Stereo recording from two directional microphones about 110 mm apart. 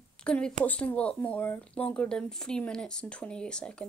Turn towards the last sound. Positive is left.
turn(degrees=10)  # may be behind; listen again after turning